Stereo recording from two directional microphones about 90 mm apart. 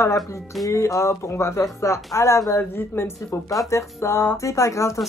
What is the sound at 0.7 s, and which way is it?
Speech, 35° left (ahead or behind).